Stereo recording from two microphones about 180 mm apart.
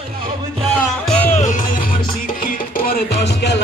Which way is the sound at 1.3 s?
45° left (ahead or behind).